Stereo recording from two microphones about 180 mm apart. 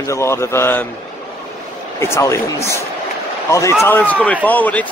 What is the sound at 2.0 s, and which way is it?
A man's voice, 15° left (ahead or behind).